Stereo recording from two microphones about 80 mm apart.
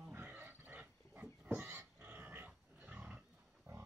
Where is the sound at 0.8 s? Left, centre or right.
Centre.